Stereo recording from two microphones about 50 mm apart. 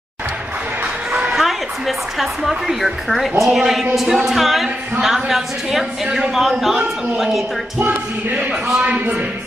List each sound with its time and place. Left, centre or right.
1.1 s a woman's voice: centre
7.8 s speech: right
8.5 s a man's voice: centre
8.8 s speech: right